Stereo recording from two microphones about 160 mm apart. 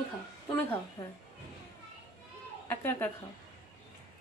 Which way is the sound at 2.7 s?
10° left (ahead or behind).